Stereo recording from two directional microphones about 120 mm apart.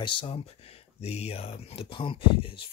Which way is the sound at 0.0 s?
45° left (ahead or behind).